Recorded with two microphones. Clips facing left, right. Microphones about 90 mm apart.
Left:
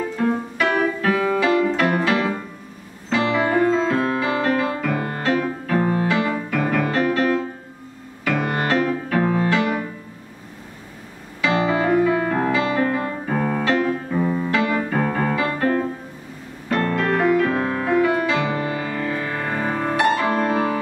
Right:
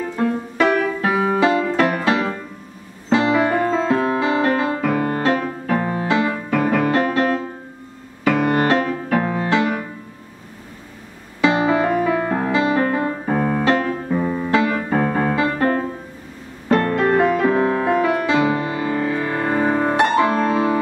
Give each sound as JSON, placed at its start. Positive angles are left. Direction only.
{"t": 0.6, "sound": "music", "side_deg": -25}
{"t": 11.4, "sound": "music", "side_deg": -25}
{"t": 13.3, "sound": "keyboard", "side_deg": -15}
{"t": 14.1, "sound": "music", "side_deg": -10}
{"t": 14.5, "sound": "music", "side_deg": -20}